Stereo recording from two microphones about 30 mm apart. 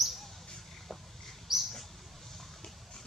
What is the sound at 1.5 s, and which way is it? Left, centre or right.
Mouse, centre.